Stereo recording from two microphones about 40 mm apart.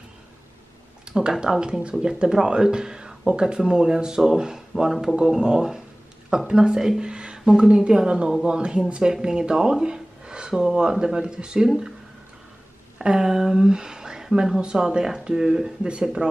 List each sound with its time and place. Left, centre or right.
1.0 s a sound: right
1.4 s speech: right
13.0 s speech: centre